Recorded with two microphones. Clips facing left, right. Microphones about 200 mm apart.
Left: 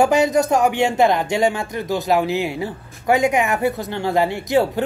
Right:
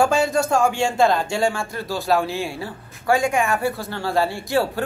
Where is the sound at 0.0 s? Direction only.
20° left (ahead or behind).